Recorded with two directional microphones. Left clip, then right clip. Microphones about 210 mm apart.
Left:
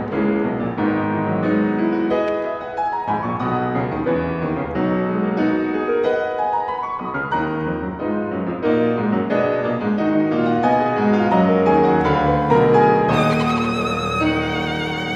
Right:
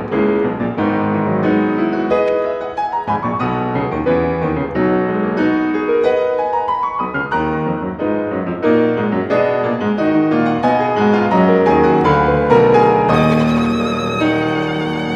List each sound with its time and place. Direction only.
4.8 s music: 25° right (ahead or behind)
8.6 s music: 25° right (ahead or behind)
10.6 s music: 20° right (ahead or behind)
13.3 s violin: centre (ahead or behind)